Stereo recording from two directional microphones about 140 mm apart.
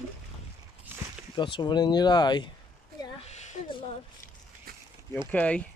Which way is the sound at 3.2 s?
55° left (ahead or behind).